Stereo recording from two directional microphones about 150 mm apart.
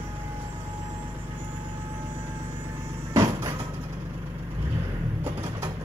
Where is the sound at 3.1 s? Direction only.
20° right (ahead or behind).